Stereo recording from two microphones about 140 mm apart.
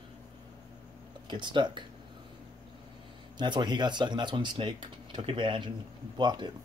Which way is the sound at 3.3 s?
30° right (ahead or behind).